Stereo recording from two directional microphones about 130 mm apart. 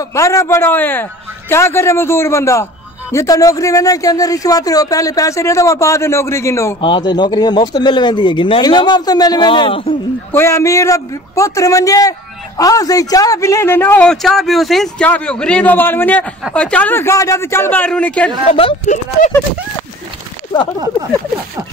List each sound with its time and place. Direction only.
0.0 s speech: 25° left (ahead or behind)
6.8 s speech: 35° left (ahead or behind)
10.3 s speech: 20° left (ahead or behind)
14.0 s speech: centre (ahead or behind)
18.5 s speech: 45° left (ahead or behind)
20.5 s speech: 35° left (ahead or behind)